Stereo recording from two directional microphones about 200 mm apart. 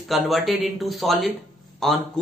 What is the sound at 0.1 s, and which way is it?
Speech, centre (ahead or behind).